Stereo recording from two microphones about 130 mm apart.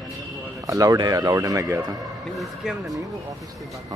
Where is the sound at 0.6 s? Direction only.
25° right (ahead or behind).